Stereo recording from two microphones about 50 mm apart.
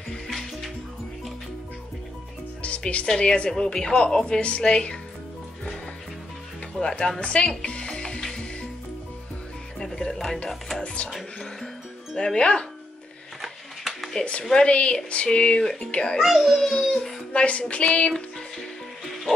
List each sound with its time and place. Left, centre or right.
0.3 s music: centre
2.6 s music: left
3.2 s a woman's voice: left
4.4 s child singing: left
6.8 s a woman's voice: centre
7.2 s music: left
9.8 s music: centre
12.2 s a woman's voice: centre
13.4 s music: centre
14.1 s child singing: left
16.2 s a child's voice: centre
17.3 s child singing: left